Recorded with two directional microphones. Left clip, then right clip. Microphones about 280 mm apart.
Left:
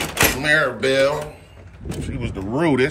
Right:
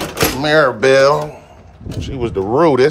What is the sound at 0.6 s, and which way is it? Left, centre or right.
Speech, centre.